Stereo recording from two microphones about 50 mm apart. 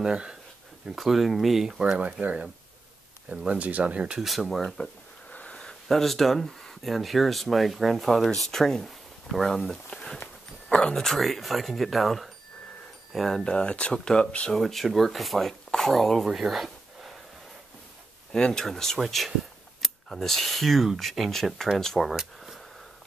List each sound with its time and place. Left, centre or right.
0.0 s speech: centre
0.9 s speech: centre
1.8 s speech: right
4.2 s speech: centre
4.8 s speech: left
5.3 s a sound: left
5.6 s speech: centre
9.8 s speech: centre
11.1 s speech: centre
13.4 s speech: centre
18.3 s speech: centre
22.1 s a sound: centre